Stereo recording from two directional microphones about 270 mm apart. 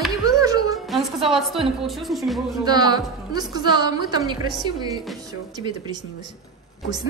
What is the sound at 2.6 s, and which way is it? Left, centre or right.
A woman's voice, centre.